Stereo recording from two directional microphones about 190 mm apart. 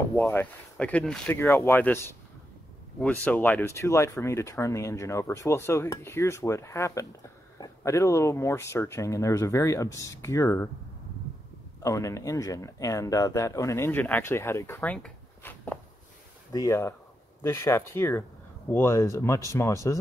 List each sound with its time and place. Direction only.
0.3 s speech: 10° left (ahead or behind)
11.8 s speech: 15° left (ahead or behind)